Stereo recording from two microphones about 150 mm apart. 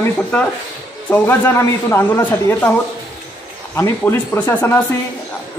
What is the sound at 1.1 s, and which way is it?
Speech, 15° left (ahead or behind).